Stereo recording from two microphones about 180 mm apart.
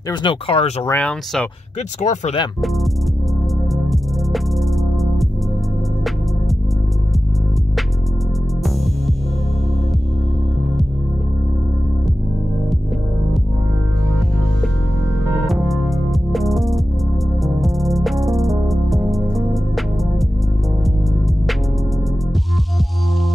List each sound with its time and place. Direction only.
0.1 s speech: 25° left (ahead or behind)
0.8 s speech: 10° left (ahead or behind)
2.0 s speech: 40° left (ahead or behind)
3.7 s music: centre (ahead or behind)
15.4 s music: centre (ahead or behind)